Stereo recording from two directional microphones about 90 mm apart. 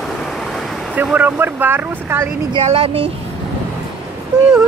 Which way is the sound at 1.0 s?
20° right (ahead or behind).